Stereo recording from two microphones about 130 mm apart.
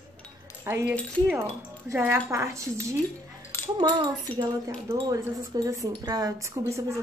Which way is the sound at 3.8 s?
35° right (ahead or behind).